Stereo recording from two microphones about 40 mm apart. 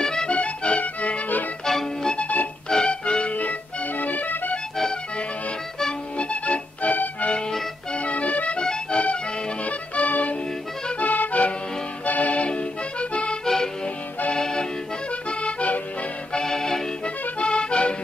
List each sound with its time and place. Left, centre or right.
0.0 s music: centre
0.3 s music: left
1.7 s music: centre
2.1 s music: left
2.7 s music: left
4.0 s accordion: left
6.1 s music: left
7.9 s accordion: left
8.5 s accordion: left
9.7 s music: left
13.1 s accordion: left
15.2 s accordion: left
16.3 s accordion: centre
17.0 s accordion: left